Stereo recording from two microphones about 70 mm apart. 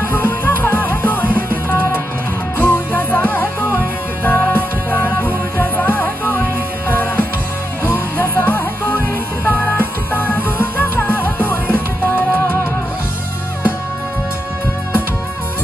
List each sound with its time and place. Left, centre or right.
0.0 s music: left